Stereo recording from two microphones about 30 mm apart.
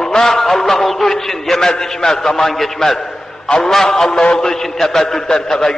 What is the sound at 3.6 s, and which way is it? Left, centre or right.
A man's voice, centre.